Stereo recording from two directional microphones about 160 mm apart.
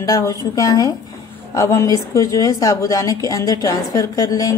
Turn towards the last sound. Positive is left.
turn(degrees=20)  # may be behind; listen again after turning